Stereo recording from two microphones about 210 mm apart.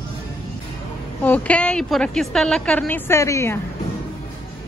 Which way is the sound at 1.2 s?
5° left (ahead or behind).